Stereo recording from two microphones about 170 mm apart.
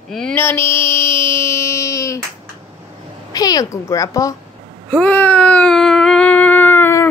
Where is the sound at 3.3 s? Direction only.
20° left (ahead or behind).